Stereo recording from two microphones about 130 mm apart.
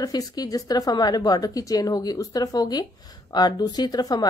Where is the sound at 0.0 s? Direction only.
30° left (ahead or behind).